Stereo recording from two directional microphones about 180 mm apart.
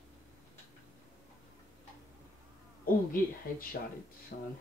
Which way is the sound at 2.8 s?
50° left (ahead or behind).